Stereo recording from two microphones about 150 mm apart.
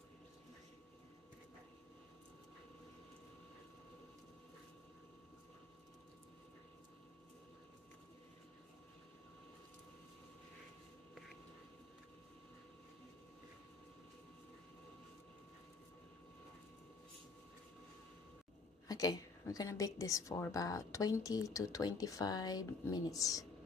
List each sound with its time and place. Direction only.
18.9 s a woman's voice: 25° left (ahead or behind)